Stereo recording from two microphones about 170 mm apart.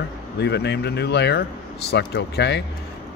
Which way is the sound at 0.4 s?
80° left.